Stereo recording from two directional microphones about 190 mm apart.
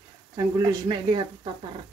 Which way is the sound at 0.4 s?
20° right (ahead or behind).